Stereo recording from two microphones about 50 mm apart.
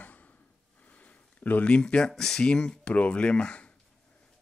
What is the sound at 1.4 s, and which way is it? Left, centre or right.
Speech, left.